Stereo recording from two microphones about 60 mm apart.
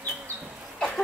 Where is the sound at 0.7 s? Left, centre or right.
Centre.